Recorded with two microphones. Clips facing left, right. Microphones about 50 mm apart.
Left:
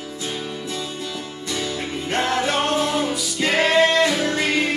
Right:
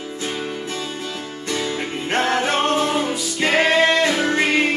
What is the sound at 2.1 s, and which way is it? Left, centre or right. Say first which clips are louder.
Music: right 2 dB; right.